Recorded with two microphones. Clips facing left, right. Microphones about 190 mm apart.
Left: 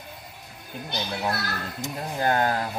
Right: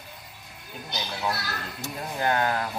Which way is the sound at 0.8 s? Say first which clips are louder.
Left 2 dB; 55° left (ahead or behind).